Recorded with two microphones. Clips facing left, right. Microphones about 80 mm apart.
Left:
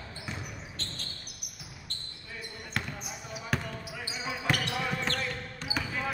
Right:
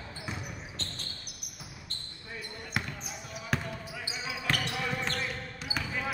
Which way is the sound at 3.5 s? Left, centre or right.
Centre.